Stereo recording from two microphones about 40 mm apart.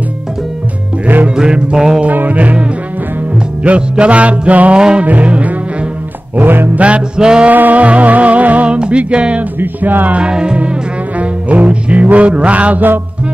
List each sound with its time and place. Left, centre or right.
1.3 s music: right
2.0 s music: right
3.6 s music: right
4.7 s music: right
5.0 s music: right
6.3 s music: right
6.7 s music: right
7.2 s music: right
7.4 s music: right
8.6 s music: right
9.6 s music: right
10.3 s music: right
11.1 s music: right